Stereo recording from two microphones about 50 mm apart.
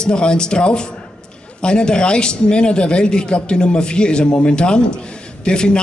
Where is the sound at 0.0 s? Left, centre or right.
Centre.